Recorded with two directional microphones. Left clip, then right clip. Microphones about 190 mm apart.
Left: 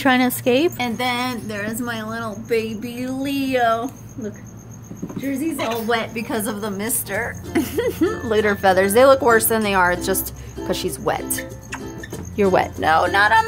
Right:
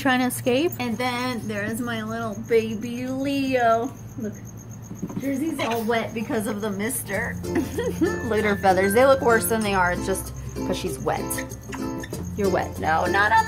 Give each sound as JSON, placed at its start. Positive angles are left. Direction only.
{"t": 0.0, "sound": "a woman's voice", "side_deg": 15}
{"t": 5.9, "sound": "speech", "side_deg": 15}
{"t": 8.3, "sound": "speech", "side_deg": 15}
{"t": 12.4, "sound": "speech", "side_deg": 30}